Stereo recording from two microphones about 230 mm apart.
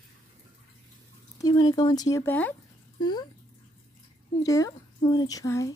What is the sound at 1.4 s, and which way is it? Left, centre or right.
Speech, centre.